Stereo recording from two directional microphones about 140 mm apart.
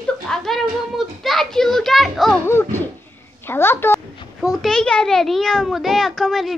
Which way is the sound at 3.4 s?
15° left (ahead or behind).